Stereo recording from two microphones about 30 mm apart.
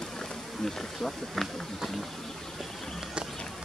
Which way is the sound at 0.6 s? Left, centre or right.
Centre.